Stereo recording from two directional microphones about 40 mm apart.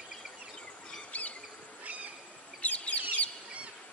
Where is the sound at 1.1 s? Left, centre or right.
Left.